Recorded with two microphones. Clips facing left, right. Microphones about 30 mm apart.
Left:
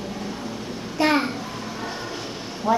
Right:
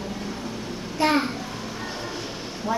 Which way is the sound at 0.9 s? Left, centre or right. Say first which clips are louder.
Left 1 dB; centre.